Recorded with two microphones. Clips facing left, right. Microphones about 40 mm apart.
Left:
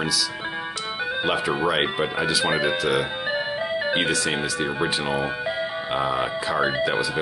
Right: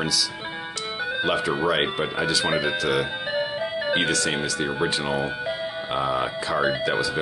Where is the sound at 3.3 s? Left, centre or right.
Left.